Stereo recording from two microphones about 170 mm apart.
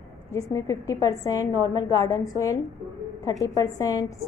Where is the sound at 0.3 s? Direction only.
20° left (ahead or behind).